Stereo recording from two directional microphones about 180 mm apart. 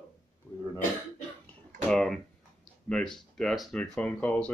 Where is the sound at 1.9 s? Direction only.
5° left (ahead or behind).